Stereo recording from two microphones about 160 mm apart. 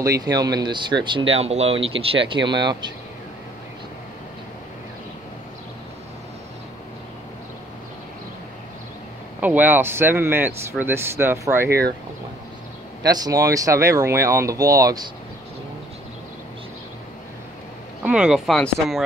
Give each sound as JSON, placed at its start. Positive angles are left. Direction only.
{"t": 0.0, "sound": "speech", "side_deg": -25}
{"t": 9.4, "sound": "speech", "side_deg": -10}
{"t": 13.0, "sound": "speech", "side_deg": -25}
{"t": 18.0, "sound": "speech", "side_deg": -5}